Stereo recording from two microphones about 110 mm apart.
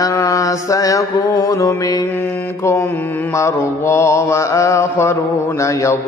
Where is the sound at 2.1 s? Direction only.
15° left (ahead or behind).